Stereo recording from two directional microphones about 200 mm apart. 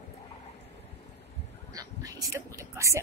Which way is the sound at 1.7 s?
15° right (ahead or behind).